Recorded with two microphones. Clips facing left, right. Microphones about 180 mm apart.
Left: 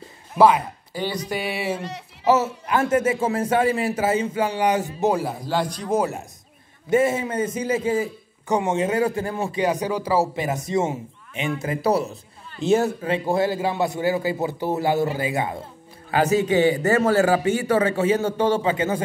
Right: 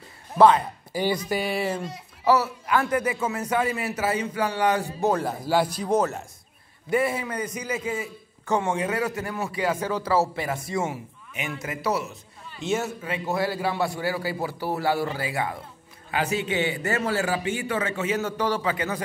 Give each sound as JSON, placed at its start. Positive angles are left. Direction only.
{"t": 0.4, "sound": "a man's voice", "side_deg": 10}
{"t": 1.8, "sound": "speech", "side_deg": 75}
{"t": 2.2, "sound": "speech", "side_deg": 20}
{"t": 5.2, "sound": "a man's voice", "side_deg": -5}
{"t": 5.9, "sound": "a man's voice", "side_deg": 10}
{"t": 6.9, "sound": "speech", "side_deg": 25}
{"t": 8.5, "sound": "a man's voice", "side_deg": 20}
{"t": 16.1, "sound": "a man's voice", "side_deg": 40}